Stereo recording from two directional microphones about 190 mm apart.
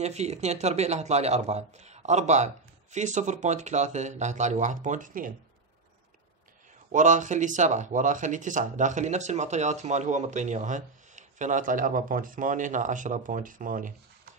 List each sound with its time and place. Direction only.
0.0 s speech: 35° right (ahead or behind)
6.9 s speech: 40° right (ahead or behind)